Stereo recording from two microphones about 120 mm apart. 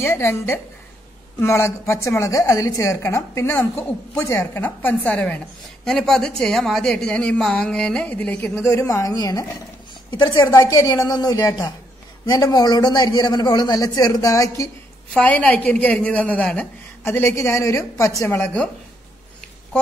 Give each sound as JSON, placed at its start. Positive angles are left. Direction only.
{"t": 0.0, "sound": "a woman's voice", "side_deg": 20}
{"t": 8.5, "sound": "a woman's voice", "side_deg": 25}
{"t": 15.1, "sound": "a woman's voice", "side_deg": 10}